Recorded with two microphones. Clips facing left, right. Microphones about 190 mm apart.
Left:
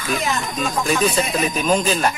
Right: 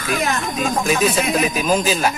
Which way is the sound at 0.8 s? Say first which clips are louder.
Even; 5° right (ahead or behind).